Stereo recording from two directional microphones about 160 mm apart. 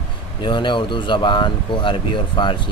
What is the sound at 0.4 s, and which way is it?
Speech, 30° left (ahead or behind).